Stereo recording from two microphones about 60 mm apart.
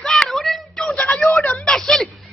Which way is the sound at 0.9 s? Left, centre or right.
Left.